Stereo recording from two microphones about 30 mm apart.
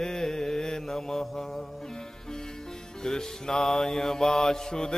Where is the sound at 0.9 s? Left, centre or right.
Centre.